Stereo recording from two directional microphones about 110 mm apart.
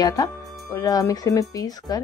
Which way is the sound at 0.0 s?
35° left (ahead or behind).